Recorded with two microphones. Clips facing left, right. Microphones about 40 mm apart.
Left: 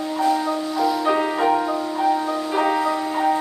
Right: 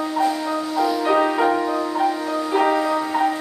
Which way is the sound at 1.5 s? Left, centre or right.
Right.